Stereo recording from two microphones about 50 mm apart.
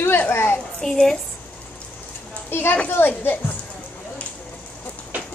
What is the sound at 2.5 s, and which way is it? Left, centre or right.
A child's voice, left.